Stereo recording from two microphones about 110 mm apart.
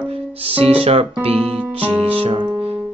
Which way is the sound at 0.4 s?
60° right (ahead or behind).